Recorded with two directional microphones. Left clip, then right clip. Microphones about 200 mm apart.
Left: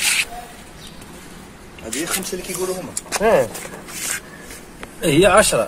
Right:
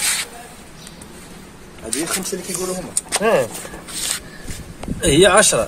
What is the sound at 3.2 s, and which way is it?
Speech, 5° left (ahead or behind).